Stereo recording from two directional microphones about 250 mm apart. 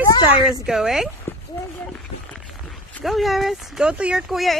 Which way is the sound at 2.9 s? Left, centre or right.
Centre.